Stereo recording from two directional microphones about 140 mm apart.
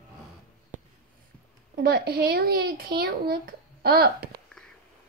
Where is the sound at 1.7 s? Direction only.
90° right.